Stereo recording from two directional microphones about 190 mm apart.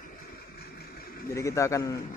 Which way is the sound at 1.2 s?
15° left (ahead or behind).